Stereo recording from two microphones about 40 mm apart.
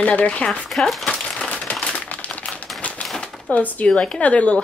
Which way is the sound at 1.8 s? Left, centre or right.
Left.